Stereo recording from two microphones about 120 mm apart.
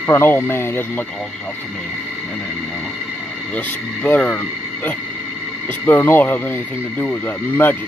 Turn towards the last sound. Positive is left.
turn(degrees=15)  # may be behind; listen again after turning